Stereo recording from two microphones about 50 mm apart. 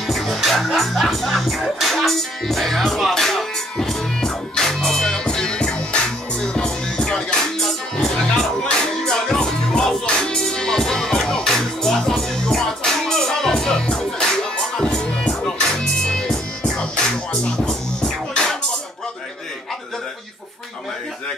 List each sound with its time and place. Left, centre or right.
0.0 s music: centre
8.6 s music: centre